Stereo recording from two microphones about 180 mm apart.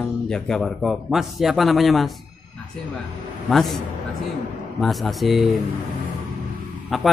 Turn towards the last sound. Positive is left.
turn(degrees=0)  # may be behind; listen again after turning